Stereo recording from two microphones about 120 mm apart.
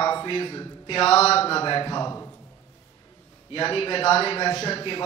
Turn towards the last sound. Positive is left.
turn(degrees=45)  # may be behind; listen again after turning